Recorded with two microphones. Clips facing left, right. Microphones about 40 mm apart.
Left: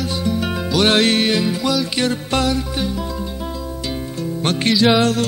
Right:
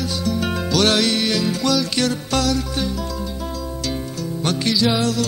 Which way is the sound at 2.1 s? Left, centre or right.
Left.